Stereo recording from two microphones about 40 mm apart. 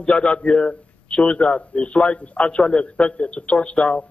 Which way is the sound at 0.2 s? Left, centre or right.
Left.